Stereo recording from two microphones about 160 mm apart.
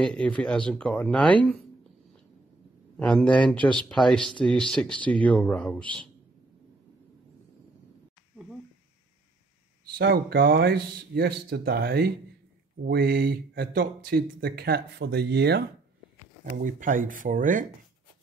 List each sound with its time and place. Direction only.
0.0 s speech: 5° left (ahead or behind)
3.0 s speech: 5° left (ahead or behind)
9.9 s speech: 70° right (ahead or behind); by 15.6 s 90° right
16.4 s speech: 55° right (ahead or behind)